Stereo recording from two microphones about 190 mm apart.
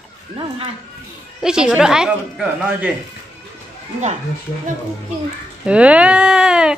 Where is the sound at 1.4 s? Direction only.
5° right (ahead or behind).